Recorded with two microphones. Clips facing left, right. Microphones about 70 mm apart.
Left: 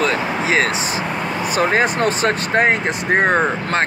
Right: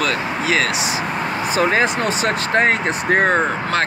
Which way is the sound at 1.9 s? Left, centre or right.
Left.